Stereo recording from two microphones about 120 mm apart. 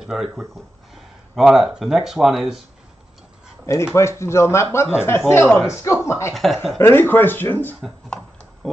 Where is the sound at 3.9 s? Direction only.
20° left (ahead or behind).